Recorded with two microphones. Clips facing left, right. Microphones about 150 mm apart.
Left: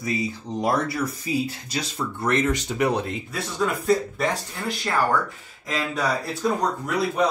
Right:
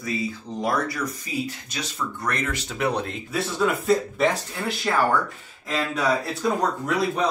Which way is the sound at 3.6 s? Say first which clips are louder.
Even; centre (ahead or behind).